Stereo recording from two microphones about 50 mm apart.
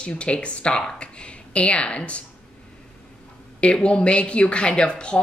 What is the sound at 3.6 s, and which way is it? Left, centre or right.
Speech, left.